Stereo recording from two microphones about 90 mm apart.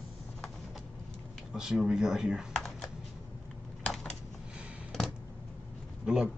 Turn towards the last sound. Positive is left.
turn(degrees=-10)  # may be behind; listen again after turning